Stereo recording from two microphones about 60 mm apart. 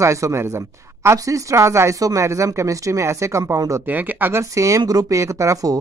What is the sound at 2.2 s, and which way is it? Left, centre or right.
A woman's voice, right.